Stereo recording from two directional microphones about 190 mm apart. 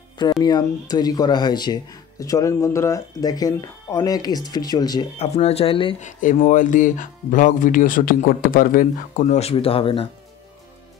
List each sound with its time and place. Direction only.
0.2 s speech: 20° left (ahead or behind)
5.2 s speech: 35° left (ahead or behind)
6.0 s speech: 40° left (ahead or behind)